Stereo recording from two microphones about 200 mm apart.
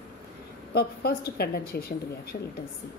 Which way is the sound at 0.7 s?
50° left (ahead or behind).